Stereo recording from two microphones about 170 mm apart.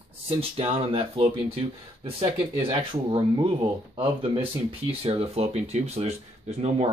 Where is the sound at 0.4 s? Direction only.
35° right (ahead or behind).